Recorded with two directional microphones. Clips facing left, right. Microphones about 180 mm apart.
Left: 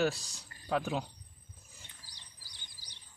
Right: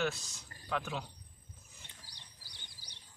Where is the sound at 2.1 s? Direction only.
60° right (ahead or behind).